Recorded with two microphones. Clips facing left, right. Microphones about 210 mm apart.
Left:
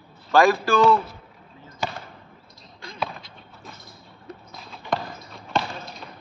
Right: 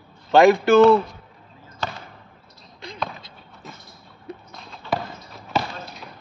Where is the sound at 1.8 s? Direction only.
10° left (ahead or behind).